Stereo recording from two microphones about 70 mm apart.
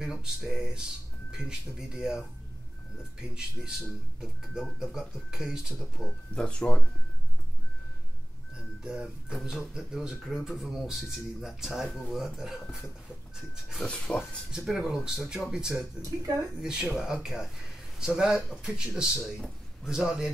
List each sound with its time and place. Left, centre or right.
0.0 s speech: centre
6.3 s speech: centre
8.5 s speech: centre
13.8 s speech: centre
14.6 s speech: centre
16.0 s speech: right
16.9 s speech: centre